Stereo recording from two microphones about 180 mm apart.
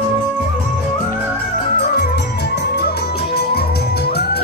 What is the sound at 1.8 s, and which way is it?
Music, 60° left (ahead or behind).